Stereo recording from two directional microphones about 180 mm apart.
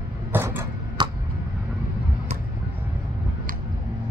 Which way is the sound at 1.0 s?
25° right (ahead or behind).